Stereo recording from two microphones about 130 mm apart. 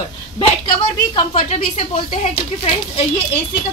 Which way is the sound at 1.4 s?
65° left (ahead or behind).